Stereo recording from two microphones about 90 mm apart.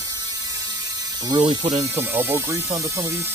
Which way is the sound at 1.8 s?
20° right (ahead or behind).